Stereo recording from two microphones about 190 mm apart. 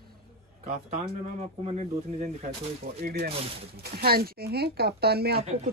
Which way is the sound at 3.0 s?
50° right (ahead or behind).